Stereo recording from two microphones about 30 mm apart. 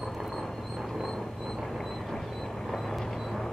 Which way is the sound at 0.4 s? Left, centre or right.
Centre.